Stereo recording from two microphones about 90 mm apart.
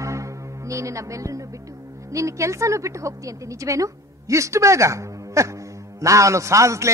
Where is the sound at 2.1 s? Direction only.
35° right (ahead or behind).